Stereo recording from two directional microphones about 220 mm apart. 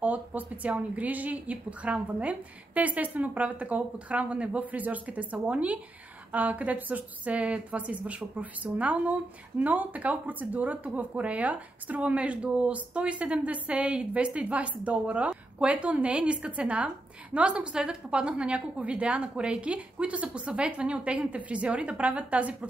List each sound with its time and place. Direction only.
0.0 s a woman's voice: 5° right (ahead or behind)